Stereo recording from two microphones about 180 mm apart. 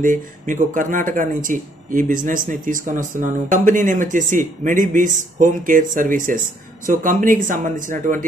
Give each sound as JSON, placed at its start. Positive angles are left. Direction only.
{"t": 0.0, "sound": "speech", "side_deg": -45}